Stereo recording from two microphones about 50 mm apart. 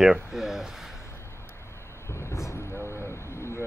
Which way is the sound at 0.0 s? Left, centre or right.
Centre.